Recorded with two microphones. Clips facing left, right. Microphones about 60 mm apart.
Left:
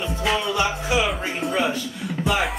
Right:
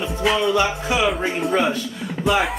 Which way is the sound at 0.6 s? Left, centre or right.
Right.